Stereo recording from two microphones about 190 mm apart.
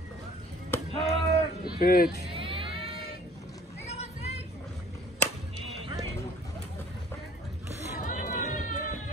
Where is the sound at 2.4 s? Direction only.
25° right (ahead or behind).